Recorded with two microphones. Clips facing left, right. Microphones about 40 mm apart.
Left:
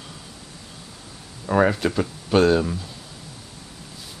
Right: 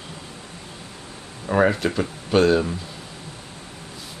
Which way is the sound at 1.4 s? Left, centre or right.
Centre.